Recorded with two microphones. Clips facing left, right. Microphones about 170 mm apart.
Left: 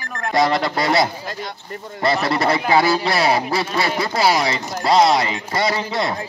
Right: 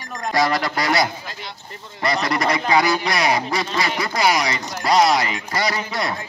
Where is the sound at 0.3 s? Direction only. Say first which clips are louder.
Left 2 dB; 25° left (ahead or behind).